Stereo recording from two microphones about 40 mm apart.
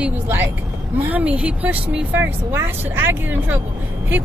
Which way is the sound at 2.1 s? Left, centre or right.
Right.